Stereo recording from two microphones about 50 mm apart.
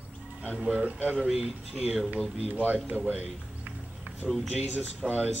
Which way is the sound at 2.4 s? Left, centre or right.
Right.